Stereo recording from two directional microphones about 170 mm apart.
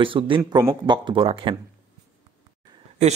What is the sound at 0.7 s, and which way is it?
Speech, 30° right (ahead or behind).